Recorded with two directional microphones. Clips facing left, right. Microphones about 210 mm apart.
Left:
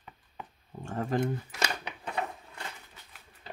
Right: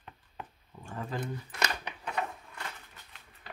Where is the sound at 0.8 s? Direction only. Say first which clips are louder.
Left 7 dB; 45° left (ahead or behind).